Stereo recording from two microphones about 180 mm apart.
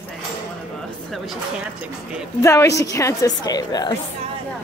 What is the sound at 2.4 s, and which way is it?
A woman's voice, 15° left (ahead or behind).